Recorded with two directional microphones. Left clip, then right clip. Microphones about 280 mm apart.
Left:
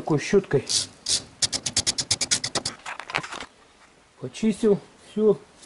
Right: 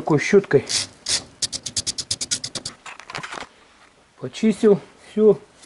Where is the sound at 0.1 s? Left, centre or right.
Centre.